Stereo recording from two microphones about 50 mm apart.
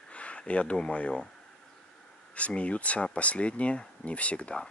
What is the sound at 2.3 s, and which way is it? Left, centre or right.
Speech, left.